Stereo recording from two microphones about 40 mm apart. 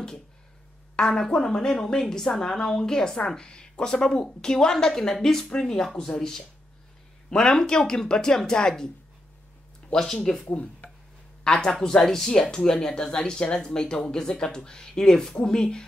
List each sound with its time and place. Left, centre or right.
0.9 s a woman's voice: centre
10.2 s speech: centre
10.5 s speech: left
11.4 s a woman's voice: centre